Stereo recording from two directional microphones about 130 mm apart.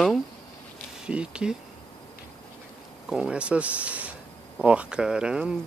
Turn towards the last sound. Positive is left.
turn(degrees=-5)  # may be behind; listen again after turning